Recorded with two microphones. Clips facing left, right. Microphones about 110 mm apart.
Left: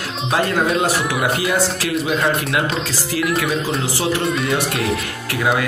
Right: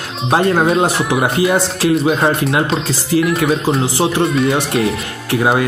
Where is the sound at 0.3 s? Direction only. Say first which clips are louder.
Right 5 dB; 35° right (ahead or behind).